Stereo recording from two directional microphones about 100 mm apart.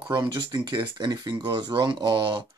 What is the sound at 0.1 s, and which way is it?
Speech, 45° right (ahead or behind).